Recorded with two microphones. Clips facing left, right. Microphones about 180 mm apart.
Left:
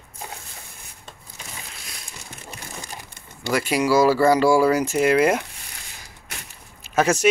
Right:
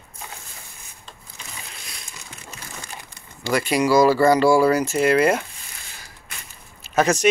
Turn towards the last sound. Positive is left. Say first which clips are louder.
# even
turn(degrees=10)  # may be behind; listen again after turning